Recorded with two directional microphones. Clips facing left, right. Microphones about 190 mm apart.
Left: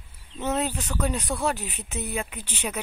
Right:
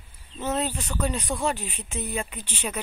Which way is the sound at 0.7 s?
10° right (ahead or behind).